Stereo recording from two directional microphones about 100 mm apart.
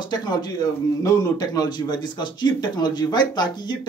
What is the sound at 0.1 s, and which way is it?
Speech, 45° left (ahead or behind).